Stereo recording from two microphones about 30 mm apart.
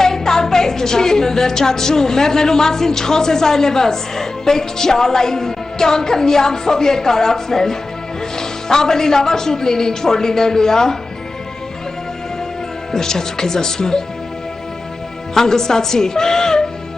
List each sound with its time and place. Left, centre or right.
0.0 s a woman's voice: centre
12.9 s speech: centre
15.3 s speech: centre